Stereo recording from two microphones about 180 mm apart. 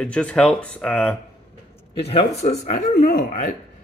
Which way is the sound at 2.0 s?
35° left (ahead or behind).